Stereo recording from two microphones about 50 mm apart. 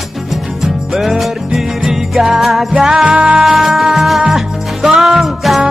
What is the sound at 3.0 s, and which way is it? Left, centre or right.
Music, right.